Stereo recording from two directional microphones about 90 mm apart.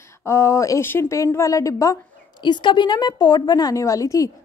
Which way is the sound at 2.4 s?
60° left (ahead or behind).